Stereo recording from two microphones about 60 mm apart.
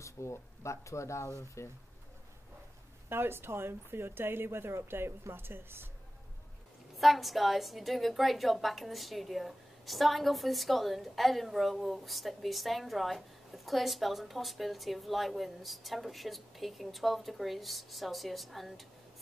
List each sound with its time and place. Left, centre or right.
0.0 s speech: left
3.1 s speech: right
7.0 s a woman's voice: centre